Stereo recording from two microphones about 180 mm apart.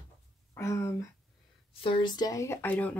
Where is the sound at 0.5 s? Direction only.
15° left (ahead or behind).